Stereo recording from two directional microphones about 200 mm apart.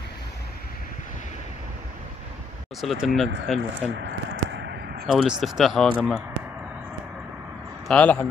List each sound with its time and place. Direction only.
2.8 s speech: centre (ahead or behind)
3.9 s a sound: 65° right (ahead or behind)
5.0 s speech: centre (ahead or behind)
7.9 s speech: 5° left (ahead or behind)